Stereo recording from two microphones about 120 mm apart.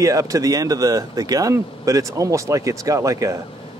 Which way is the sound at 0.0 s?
30° right (ahead or behind).